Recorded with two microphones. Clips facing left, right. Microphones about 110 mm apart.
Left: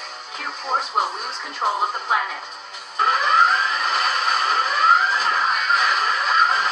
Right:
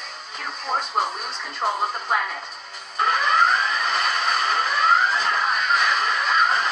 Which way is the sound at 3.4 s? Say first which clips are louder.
Left 1 dB; centre (ahead or behind).